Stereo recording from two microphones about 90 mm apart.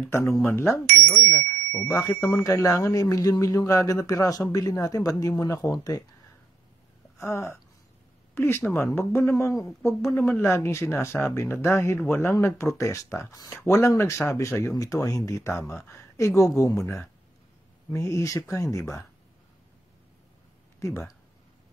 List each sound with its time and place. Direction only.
0.1 s speech: 30° left (ahead or behind)
0.5 s bicycle bell: 25° left (ahead or behind)
2.0 s speech: 35° left (ahead or behind)
7.2 s speech: 30° left (ahead or behind)
17.9 s speech: 35° left (ahead or behind)